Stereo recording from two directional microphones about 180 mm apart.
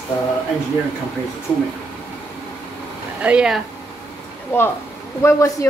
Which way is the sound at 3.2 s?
5° right (ahead or behind).